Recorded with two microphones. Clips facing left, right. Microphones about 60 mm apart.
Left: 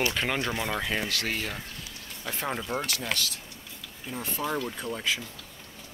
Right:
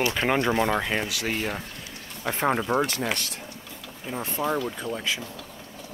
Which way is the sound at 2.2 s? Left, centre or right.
Right.